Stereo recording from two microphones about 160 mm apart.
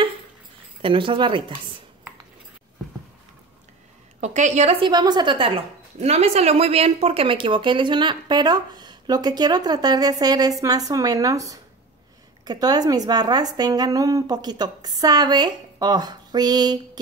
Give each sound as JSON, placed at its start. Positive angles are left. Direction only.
{"t": 0.8, "sound": "speech", "side_deg": -30}
{"t": 4.2, "sound": "a woman's voice", "side_deg": -50}
{"t": 4.7, "sound": "speech", "side_deg": -30}
{"t": 5.9, "sound": "speech", "side_deg": -40}